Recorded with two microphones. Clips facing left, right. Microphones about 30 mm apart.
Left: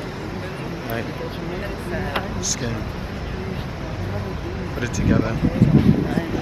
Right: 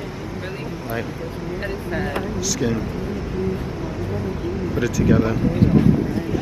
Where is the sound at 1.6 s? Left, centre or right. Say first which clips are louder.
Right 2 dB; centre.